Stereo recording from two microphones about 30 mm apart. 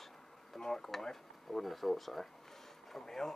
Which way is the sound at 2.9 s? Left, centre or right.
Centre.